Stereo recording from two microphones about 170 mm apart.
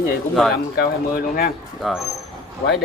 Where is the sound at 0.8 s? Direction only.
60° left (ahead or behind).